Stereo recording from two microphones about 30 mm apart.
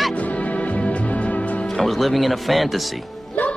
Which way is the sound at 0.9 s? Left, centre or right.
Left.